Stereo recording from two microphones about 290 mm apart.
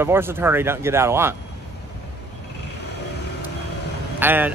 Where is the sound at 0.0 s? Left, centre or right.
Centre.